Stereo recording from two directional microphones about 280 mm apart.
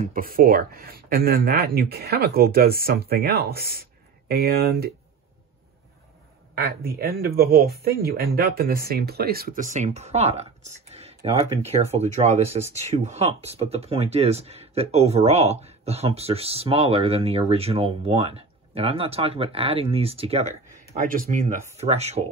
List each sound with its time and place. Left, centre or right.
0.0 s speech: right
6.5 s speech: right